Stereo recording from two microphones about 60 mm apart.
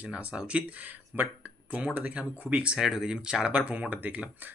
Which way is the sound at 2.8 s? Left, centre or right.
Centre.